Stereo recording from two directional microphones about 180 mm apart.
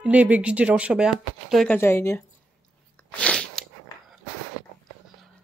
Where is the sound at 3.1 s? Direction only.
5° left (ahead or behind).